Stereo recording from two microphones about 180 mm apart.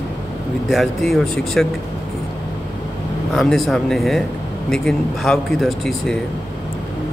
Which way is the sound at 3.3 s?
Centre (ahead or behind).